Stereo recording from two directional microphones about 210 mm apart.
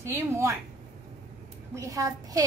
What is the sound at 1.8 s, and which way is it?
Speech, 15° right (ahead or behind).